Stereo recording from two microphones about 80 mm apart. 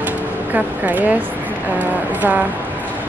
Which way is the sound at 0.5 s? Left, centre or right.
Right.